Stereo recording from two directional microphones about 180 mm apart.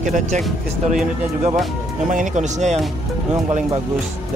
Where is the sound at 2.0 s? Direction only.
45° right (ahead or behind).